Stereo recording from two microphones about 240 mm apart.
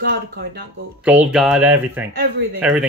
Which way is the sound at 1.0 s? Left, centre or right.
Centre.